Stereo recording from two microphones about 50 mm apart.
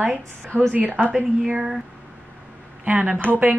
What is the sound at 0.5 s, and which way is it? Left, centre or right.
Speech, right.